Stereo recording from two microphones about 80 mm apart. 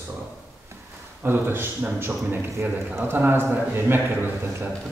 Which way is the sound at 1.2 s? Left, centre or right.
Right.